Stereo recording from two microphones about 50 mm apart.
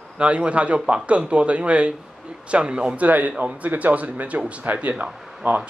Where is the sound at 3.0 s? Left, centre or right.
Right.